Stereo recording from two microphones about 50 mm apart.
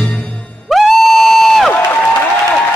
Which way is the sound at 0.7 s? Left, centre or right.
Centre.